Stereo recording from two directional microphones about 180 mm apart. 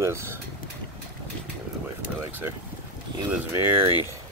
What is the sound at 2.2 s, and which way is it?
Speech, 10° right (ahead or behind).